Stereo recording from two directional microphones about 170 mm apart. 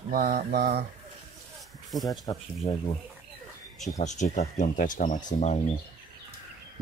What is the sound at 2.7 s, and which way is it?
Speech, 40° left (ahead or behind).